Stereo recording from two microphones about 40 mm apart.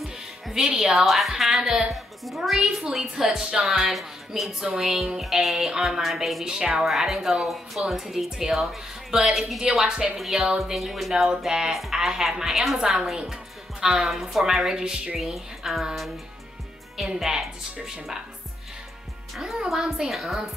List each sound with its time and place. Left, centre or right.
0.7 s a woman's voice: right
0.9 s a woman's voice: centre
2.6 s a woman's voice: centre
5.2 s a woman's voice: centre
6.4 s a woman's voice: right
6.9 s a woman's voice: centre
10.1 s a woman's voice: centre
11.2 s a woman's voice: centre
15.3 s speech: centre
16.9 s a woman's voice: centre
19.3 s a woman's voice: centre
20.1 s speech: centre